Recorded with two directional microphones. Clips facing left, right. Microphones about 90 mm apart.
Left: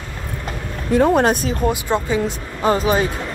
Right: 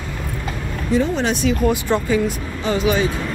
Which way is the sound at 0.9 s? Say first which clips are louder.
Left 5 dB; 55° left (ahead or behind).